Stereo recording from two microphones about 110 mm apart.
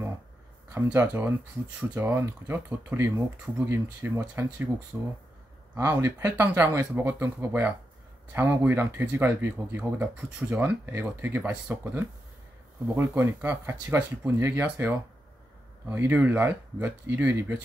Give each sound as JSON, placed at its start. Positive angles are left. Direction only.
{"t": 0.7, "sound": "speech", "side_deg": -20}
{"t": 5.8, "sound": "speech", "side_deg": -20}